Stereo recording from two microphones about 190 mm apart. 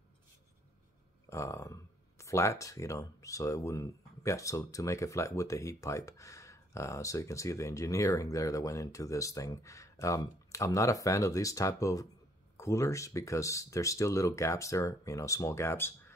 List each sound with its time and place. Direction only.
1.3 s speech: 15° left (ahead or behind)